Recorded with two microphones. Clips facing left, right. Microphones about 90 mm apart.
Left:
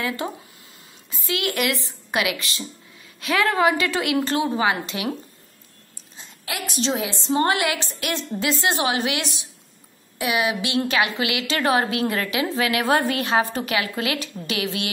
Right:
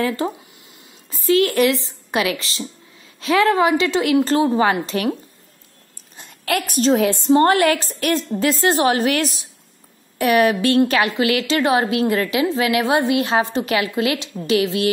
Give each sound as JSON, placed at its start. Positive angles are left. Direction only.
{"t": 1.1, "sound": "a woman's voice", "side_deg": -40}
{"t": 6.1, "sound": "a woman's voice", "side_deg": -60}
{"t": 7.2, "sound": "a woman's voice", "side_deg": -40}
{"t": 10.1, "sound": "a woman's voice", "side_deg": -50}
{"t": 10.9, "sound": "a woman's voice", "side_deg": -35}